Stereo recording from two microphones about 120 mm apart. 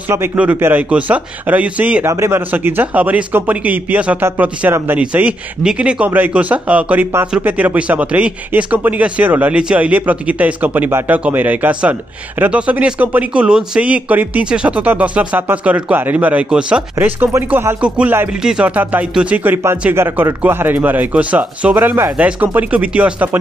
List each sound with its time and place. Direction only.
0.1 s a man's voice: 15° right (ahead or behind)
2.0 s a man's voice: 20° right (ahead or behind)
18.4 s a man's voice: 5° right (ahead or behind)